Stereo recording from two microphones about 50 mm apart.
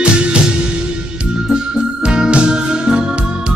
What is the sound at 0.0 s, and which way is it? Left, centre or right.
Music, right.